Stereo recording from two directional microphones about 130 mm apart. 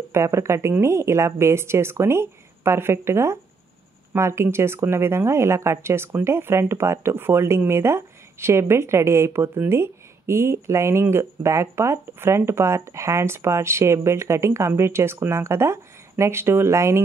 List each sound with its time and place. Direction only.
0.1 s a woman's voice: 20° right (ahead or behind)